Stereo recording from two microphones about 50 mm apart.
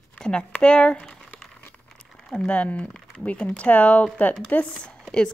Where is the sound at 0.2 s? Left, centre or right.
Centre.